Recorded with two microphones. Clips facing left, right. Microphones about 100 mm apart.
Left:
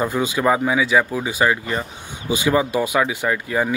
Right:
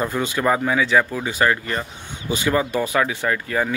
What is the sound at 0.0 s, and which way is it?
Speech, 15° left (ahead or behind).